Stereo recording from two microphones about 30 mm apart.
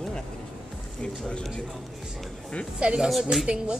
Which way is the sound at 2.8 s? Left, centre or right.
Right.